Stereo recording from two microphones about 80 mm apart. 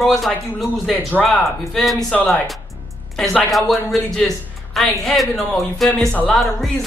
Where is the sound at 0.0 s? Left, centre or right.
Centre.